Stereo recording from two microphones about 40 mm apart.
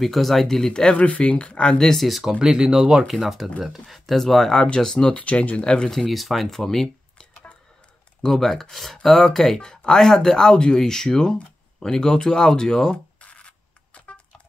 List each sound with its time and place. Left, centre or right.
0.0 s speech: centre
0.8 s speech: left
2.0 s speech: centre
2.3 s speech: centre
4.6 s speech: left
5.6 s speech: left
5.9 s speech: centre
8.2 s speech: centre
13.2 s a sound: left